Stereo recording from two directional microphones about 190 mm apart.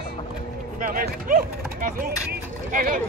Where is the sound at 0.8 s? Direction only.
45° right (ahead or behind).